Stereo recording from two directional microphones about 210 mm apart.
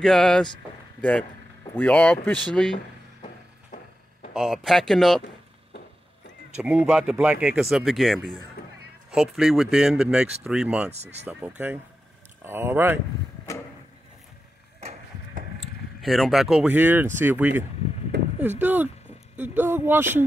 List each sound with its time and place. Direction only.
0.0 s speech: centre (ahead or behind)
1.8 s speech: 5° left (ahead or behind)
4.3 s speech: centre (ahead or behind)
6.6 s speech: 5° right (ahead or behind)
8.6 s music: 45° left (ahead or behind)
9.1 s speech: centre (ahead or behind)
10.9 s speech: 30° right (ahead or behind)
11.2 s speech: 10° right (ahead or behind)
14.8 s a sound: 30° right (ahead or behind)
16.0 s speech: centre (ahead or behind)